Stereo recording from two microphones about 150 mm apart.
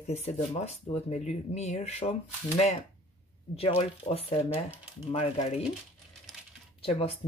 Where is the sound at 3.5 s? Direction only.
40° left (ahead or behind).